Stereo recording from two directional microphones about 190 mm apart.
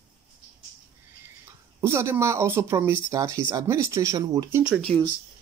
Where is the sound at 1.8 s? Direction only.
15° right (ahead or behind).